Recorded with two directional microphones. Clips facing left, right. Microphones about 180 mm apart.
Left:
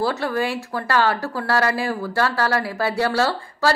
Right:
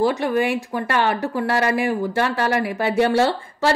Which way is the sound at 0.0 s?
15° right (ahead or behind).